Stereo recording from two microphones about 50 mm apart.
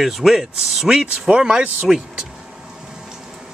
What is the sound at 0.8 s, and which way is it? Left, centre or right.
Speech, centre.